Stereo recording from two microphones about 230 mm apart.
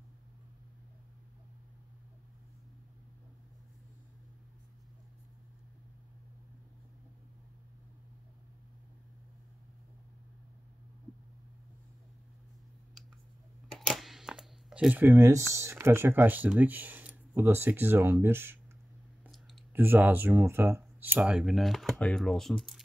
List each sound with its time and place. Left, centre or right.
13.7 s camera: centre
15.5 s speech: centre